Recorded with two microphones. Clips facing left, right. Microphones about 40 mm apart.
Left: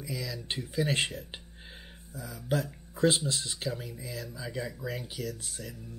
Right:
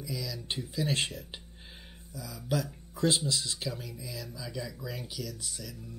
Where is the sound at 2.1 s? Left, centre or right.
Left.